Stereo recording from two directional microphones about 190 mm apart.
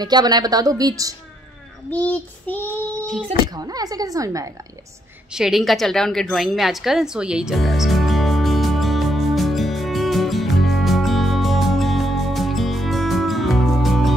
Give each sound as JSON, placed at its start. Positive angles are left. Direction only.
{"t": 0.0, "sound": "a woman's voice", "side_deg": -20}
{"t": 1.9, "sound": "child singing", "side_deg": 10}
{"t": 3.5, "sound": "a woman's voice", "side_deg": -20}
{"t": 5.3, "sound": "a sound", "side_deg": 0}